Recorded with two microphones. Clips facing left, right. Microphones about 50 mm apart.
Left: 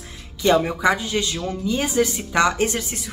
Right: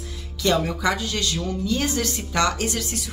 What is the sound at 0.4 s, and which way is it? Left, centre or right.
Speech, left.